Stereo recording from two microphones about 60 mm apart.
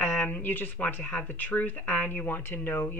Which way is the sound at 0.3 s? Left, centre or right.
Left.